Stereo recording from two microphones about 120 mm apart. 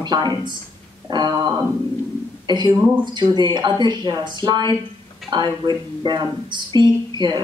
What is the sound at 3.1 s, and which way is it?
Speech, 35° right (ahead or behind).